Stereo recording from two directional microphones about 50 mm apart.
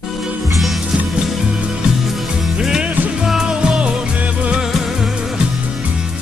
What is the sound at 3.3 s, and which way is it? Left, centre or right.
Music, centre.